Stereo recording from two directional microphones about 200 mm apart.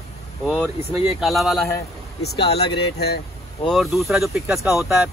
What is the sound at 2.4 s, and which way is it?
Speech, 25° left (ahead or behind).